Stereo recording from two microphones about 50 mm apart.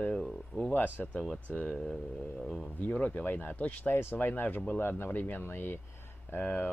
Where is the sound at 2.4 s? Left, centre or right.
Centre.